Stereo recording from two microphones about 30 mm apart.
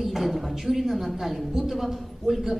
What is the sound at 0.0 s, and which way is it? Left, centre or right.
A man's voice, centre.